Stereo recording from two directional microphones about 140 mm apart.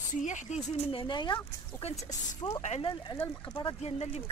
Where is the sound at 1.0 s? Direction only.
35° left (ahead or behind).